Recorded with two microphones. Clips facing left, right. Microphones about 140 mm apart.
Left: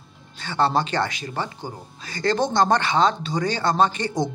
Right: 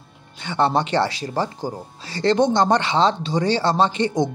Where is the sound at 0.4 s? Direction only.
20° right (ahead or behind).